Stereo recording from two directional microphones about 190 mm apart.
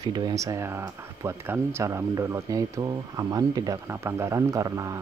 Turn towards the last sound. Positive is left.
turn(degrees=-15)  # may be behind; listen again after turning